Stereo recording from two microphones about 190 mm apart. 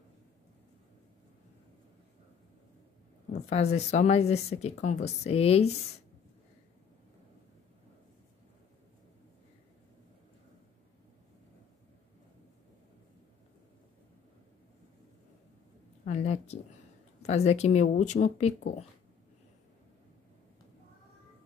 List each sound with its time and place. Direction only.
3.3 s speech: 35° left (ahead or behind)
16.1 s a sound: 35° left (ahead or behind)
17.2 s speech: 35° left (ahead or behind)